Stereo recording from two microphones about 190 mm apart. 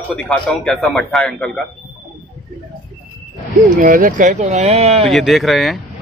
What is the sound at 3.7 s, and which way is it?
Speech, 45° right (ahead or behind).